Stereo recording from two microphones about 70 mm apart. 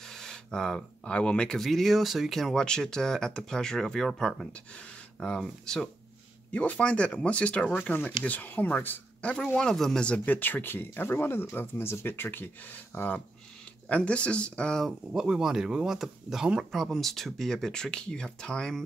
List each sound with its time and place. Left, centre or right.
0.0 s speech: centre
1.6 s speech: centre
6.5 s speech: left
9.5 s speech: centre
10.0 s speech: left
14.9 s speech: centre